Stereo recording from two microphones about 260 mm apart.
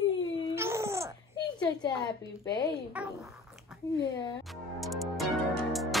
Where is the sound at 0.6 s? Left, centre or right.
Centre.